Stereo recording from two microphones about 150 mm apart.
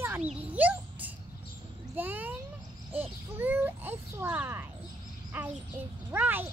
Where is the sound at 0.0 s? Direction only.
15° right (ahead or behind).